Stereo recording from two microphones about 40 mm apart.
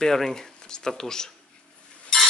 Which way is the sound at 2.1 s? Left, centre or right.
Centre.